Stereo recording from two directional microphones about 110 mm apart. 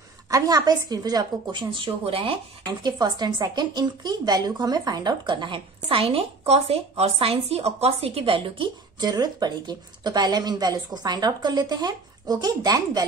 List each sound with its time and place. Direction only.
0.3 s speech: 35° right (ahead or behind); by 2.3 s 55° right (ahead or behind)
2.6 s speech: 40° right (ahead or behind)